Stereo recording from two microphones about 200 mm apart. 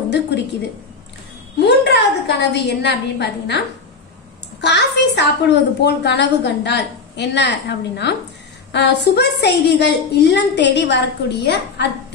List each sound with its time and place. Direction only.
1.7 s a woman's voice: 60° left (ahead or behind)